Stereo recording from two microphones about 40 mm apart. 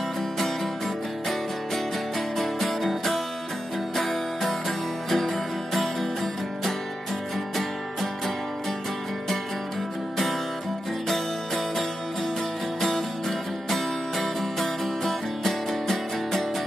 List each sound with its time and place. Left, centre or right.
2.3 s music: centre
11.1 s music: centre
13.7 s music: centre